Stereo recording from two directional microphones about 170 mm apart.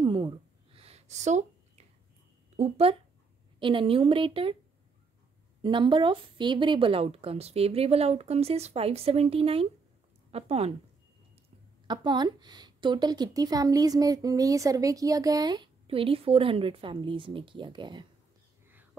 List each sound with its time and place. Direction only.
0.0 s a sound: 30° right (ahead or behind)
2.5 s speech: 40° right (ahead or behind)
5.6 s speech: 30° right (ahead or behind)
11.9 s a woman's voice: 25° right (ahead or behind)